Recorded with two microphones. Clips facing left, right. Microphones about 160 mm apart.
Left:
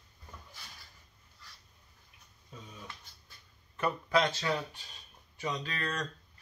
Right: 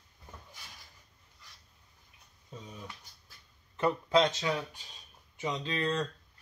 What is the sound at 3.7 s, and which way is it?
Speech, 20° right (ahead or behind).